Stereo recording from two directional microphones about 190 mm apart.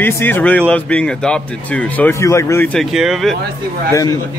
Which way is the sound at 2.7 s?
Centre (ahead or behind).